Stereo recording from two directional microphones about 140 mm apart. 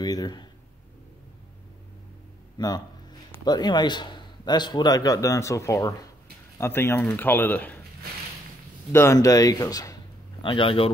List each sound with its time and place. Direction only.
0.0 s a man's voice: 30° left (ahead or behind)
2.5 s a man's voice: 30° left (ahead or behind); by 7.8 s 15° left (ahead or behind)
8.9 s a man's voice: 20° left (ahead or behind)
10.4 s speech: 40° left (ahead or behind)